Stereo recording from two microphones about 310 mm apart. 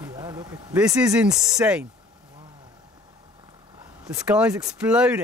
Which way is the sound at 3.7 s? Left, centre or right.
Centre.